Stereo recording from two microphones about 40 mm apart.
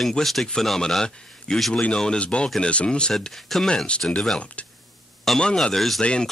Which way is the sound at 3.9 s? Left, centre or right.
Left.